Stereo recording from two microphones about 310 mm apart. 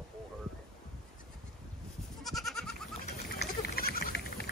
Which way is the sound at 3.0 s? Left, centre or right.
Left.